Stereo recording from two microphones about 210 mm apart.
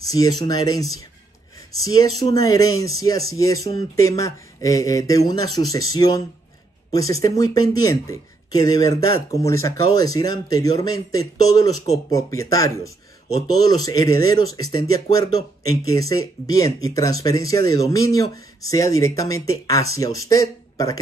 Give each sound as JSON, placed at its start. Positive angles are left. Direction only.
{"t": 0.1, "sound": "speech", "side_deg": 15}